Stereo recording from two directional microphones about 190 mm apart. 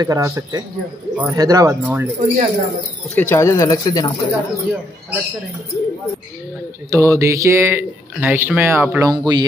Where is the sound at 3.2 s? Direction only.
15° left (ahead or behind).